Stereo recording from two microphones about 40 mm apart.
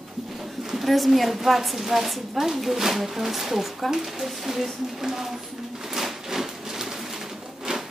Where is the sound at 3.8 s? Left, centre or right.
Centre.